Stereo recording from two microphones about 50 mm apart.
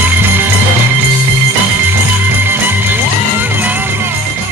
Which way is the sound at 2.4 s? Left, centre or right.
Right.